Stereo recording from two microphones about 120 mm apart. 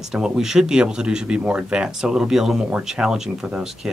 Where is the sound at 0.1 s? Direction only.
5° right (ahead or behind).